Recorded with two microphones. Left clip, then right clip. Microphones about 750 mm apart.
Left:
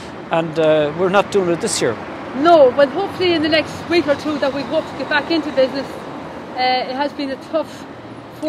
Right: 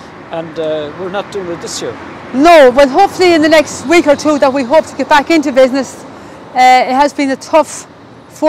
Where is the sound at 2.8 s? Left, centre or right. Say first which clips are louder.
Right 9 dB; right.